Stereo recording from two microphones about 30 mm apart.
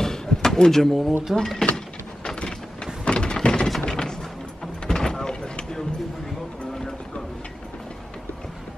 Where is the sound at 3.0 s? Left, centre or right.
Left.